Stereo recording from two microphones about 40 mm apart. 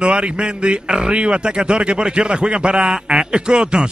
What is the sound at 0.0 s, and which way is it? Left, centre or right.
A man's voice, right.